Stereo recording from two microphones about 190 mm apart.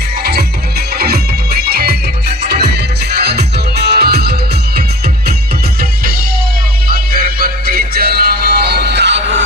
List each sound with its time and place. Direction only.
0.2 s music: 55° right (ahead or behind)
6.9 s music: 50° right (ahead or behind); by 9.4 s 70° right (ahead or behind)